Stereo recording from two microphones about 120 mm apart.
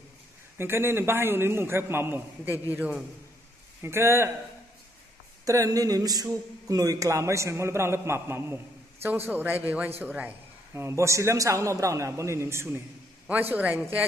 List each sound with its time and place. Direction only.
0.6 s a man's voice: 20° right (ahead or behind)
5.4 s a man's voice: 30° right (ahead or behind); by 13.8 s 10° right (ahead or behind)